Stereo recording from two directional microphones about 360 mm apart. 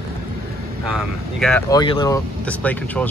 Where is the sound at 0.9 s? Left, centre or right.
Centre.